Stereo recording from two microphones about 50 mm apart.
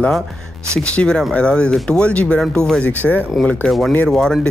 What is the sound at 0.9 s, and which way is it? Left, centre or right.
Speech, centre.